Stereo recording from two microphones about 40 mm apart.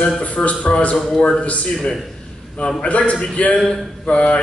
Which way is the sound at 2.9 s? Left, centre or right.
Left.